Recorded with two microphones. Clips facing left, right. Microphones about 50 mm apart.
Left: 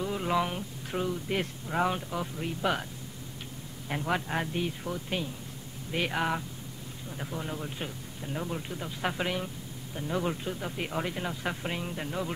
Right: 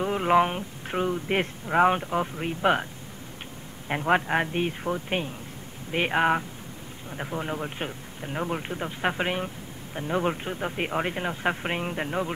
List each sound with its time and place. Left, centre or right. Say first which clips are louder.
0.0 s speech: right 7 dB; right
3.9 s speech: right 7 dB; right